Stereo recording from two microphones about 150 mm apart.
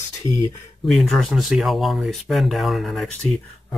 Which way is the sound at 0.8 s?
Centre (ahead or behind).